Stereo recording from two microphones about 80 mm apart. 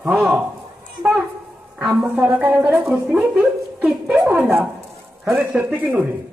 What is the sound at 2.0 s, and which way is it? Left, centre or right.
Speech, centre.